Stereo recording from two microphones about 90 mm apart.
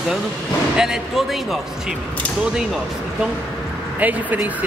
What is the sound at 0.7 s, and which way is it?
Speech, 5° right (ahead or behind).